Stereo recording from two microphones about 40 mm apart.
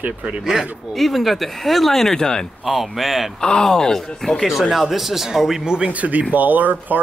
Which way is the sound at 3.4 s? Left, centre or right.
Centre.